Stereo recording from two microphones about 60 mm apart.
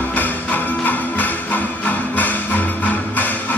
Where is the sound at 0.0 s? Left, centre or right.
Left.